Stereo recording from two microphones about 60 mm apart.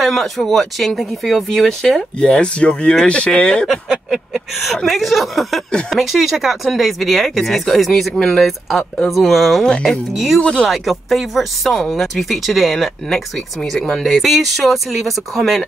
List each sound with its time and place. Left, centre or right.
0.0 s speech: centre
3.9 s a sound: centre
4.6 s speech: centre
10.4 s speech: centre
10.7 s speech: centre